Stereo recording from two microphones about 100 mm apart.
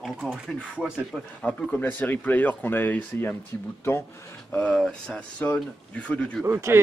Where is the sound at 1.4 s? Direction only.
15° left (ahead or behind).